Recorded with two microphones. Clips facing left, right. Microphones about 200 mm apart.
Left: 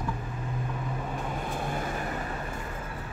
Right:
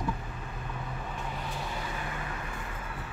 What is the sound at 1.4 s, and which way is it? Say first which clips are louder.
Vehicle: left 5 dB; 50° left (ahead or behind).